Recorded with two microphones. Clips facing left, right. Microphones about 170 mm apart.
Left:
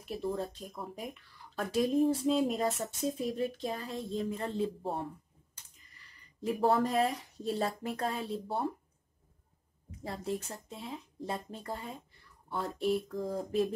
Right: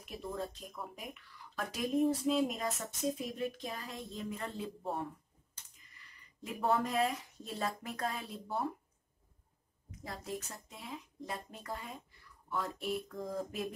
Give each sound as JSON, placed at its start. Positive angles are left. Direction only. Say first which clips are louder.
{"t": 0.0, "sound": "speech", "louder": "left 5 dB", "side_deg": 35}
{"t": 9.8, "sound": "speech", "louder": "left 6 dB", "side_deg": 30}